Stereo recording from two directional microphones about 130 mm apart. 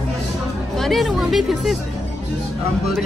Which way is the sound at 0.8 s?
Centre (ahead or behind).